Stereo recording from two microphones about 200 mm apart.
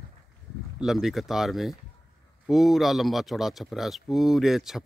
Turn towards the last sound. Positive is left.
turn(degrees=0)  # may be behind; listen again after turning